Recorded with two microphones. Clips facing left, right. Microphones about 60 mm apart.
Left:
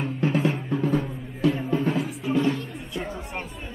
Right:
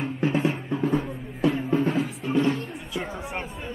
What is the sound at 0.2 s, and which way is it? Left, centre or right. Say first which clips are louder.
Music: even; right.